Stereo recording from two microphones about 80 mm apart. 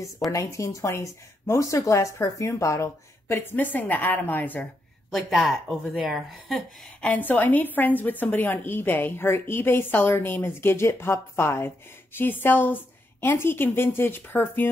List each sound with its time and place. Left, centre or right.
0.3 s speech: left
5.1 s a woman's voice: centre
7.0 s a woman's voice: left